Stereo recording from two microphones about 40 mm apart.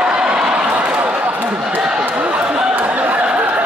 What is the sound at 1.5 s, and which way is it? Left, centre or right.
Basketball bounce, right.